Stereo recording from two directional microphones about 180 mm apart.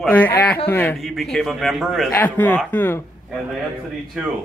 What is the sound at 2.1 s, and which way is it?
Speech, 10° left (ahead or behind).